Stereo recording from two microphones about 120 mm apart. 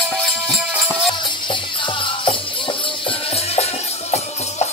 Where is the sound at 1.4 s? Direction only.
45° left (ahead or behind).